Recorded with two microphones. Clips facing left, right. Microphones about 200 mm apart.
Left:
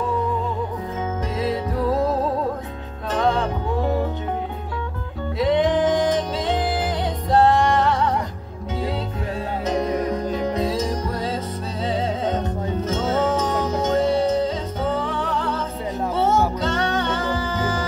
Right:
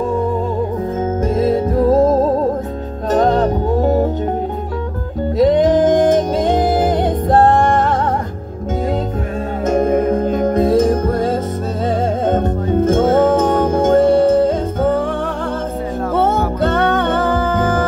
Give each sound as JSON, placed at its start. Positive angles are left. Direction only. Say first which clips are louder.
{"t": 1.2, "sound": "music", "louder": "right 10 dB", "side_deg": -50}
{"t": 5.4, "sound": "music", "louder": "right 7 dB", "side_deg": -40}
{"t": 9.7, "sound": "music", "louder": "right 9 dB", "side_deg": -50}